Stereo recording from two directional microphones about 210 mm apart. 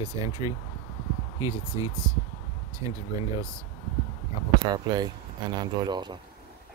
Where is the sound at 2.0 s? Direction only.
15° right (ahead or behind).